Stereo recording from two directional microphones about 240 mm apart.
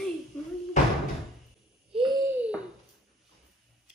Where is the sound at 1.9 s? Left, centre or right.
Centre.